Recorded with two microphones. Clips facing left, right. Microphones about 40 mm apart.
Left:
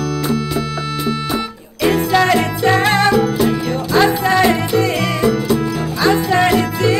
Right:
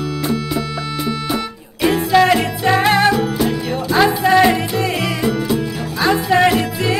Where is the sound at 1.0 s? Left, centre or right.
Centre.